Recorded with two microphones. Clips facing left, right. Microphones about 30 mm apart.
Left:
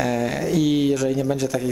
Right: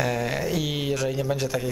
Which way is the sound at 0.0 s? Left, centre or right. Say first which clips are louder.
Left 3 dB; centre.